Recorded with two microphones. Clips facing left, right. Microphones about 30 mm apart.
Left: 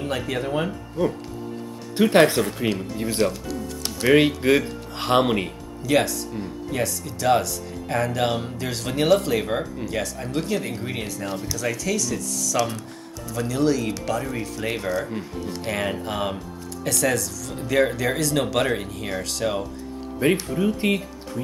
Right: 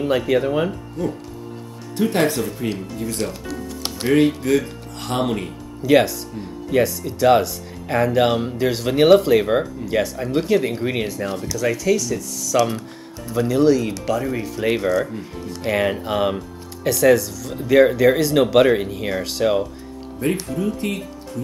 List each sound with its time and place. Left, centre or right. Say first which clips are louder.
0.0 s speech: right 8 dB; centre
2.0 s speech: left 3 dB; left
3.2 s speech: left 5 dB; centre
4.4 s speech: even; left
5.8 s speech: right 6 dB; centre
6.3 s speech: left 1 dB; centre
6.7 s speech: right 9 dB; centre
11.2 s speech: right 2 dB; centre
20.4 s speech: left 1 dB; left